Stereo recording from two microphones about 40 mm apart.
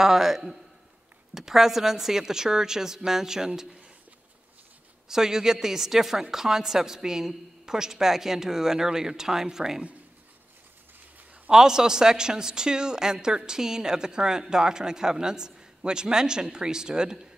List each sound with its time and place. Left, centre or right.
0.0 s a man's voice: centre
5.0 s a man's voice: centre
11.5 s a man's voice: centre